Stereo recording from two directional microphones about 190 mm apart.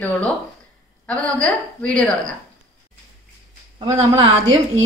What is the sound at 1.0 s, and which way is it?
A woman's voice, 5° left (ahead or behind).